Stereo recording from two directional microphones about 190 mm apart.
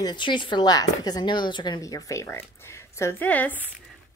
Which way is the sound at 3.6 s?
10° right (ahead or behind).